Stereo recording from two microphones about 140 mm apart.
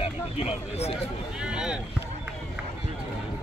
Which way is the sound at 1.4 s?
5° right (ahead or behind).